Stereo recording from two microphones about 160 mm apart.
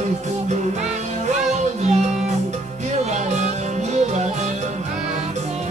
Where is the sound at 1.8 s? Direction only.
45° right (ahead or behind).